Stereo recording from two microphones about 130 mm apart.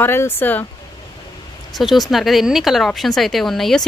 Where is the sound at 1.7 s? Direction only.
Centre (ahead or behind).